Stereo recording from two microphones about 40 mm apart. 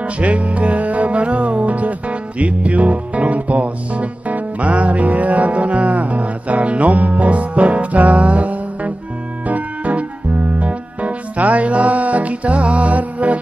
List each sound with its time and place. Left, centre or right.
0.0 s music: right